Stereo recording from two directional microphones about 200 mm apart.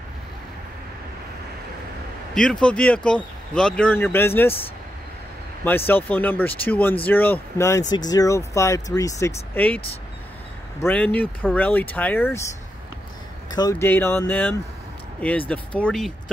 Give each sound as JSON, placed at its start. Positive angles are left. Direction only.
{"t": 2.3, "sound": "speech", "side_deg": 5}
{"t": 5.6, "sound": "speech", "side_deg": 10}
{"t": 10.8, "sound": "speech", "side_deg": 5}
{"t": 13.5, "sound": "speech", "side_deg": 20}